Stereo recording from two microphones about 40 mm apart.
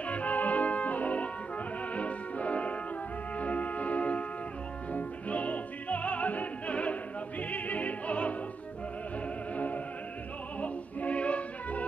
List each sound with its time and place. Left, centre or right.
0.0 s music: left
10.6 s music: left